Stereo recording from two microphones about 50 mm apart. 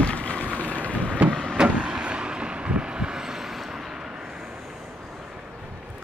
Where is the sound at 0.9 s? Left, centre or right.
Left.